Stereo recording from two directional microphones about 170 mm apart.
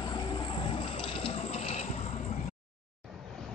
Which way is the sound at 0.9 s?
30° left (ahead or behind).